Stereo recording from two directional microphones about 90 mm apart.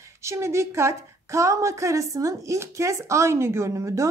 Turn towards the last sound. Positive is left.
turn(degrees=-35)  # may be behind; listen again after turning